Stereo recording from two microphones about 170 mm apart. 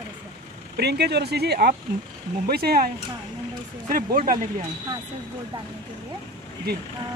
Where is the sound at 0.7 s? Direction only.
75° right (ahead or behind).